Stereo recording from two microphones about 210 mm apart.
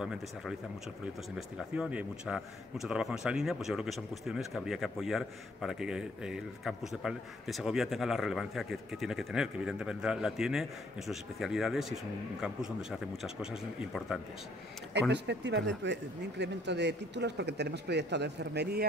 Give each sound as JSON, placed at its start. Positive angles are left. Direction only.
{"t": 0.0, "sound": "a man's voice", "side_deg": -5}
{"t": 15.0, "sound": "speech", "side_deg": -55}